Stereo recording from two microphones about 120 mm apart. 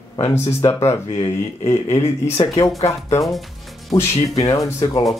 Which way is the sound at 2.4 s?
45° left (ahead or behind).